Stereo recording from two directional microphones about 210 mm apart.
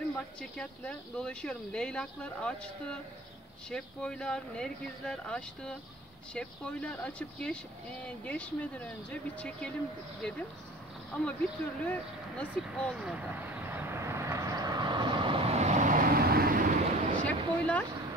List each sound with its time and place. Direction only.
0.1 s speech: 5° left (ahead or behind)
11.8 s speech: 5° left (ahead or behind)
12.6 s vehicle: centre (ahead or behind); by 17.2 s 40° right (ahead or behind)
17.2 s a sound: 5° left (ahead or behind)